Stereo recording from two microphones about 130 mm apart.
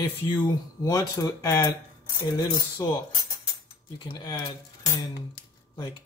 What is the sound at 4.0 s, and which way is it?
Speech, 35° left (ahead or behind).